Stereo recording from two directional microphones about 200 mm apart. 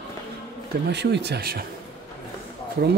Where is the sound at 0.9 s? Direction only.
60° right (ahead or behind).